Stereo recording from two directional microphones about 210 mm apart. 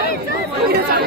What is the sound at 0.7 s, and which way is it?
Chatter, 50° right (ahead or behind).